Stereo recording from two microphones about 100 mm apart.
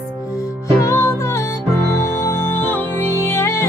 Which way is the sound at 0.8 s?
25° left (ahead or behind).